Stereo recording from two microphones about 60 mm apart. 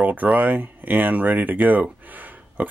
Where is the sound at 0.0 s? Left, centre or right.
Right.